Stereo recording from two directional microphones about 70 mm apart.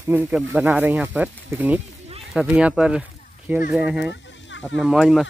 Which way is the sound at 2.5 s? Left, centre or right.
Centre.